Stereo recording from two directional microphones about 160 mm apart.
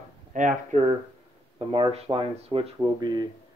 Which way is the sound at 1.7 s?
35° right (ahead or behind).